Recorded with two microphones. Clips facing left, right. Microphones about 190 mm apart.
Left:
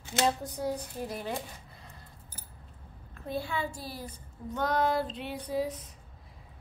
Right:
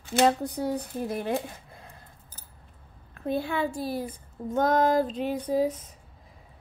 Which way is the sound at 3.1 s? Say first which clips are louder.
Right 6 dB; 55° right (ahead or behind).